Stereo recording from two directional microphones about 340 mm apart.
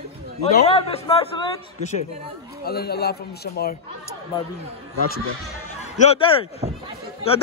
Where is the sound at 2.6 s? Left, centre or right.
Left.